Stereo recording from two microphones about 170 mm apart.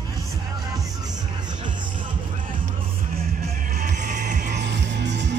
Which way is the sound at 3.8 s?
45° right (ahead or behind).